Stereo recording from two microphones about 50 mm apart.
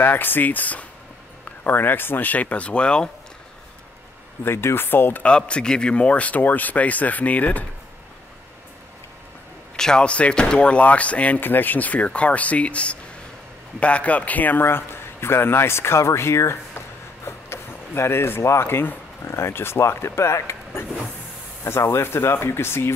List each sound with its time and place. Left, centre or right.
0.0 s speech: left; by 3.1 s centre
4.5 s speech: left
5.2 s speech: left
9.8 s speech: centre
10.0 s speech: left
11.4 s speech: left
14.6 s a man's voice: left
17.2 s a man's voice: left